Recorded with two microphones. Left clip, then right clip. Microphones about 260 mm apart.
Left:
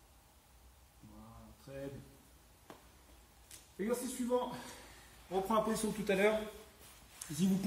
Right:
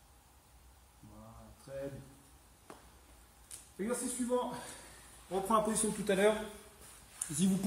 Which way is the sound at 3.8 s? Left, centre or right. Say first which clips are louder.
Even; centre.